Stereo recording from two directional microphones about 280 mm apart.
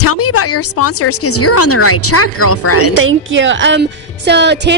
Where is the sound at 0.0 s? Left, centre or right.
Left.